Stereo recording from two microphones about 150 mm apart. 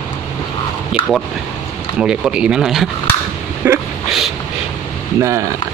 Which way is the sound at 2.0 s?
5° right (ahead or behind).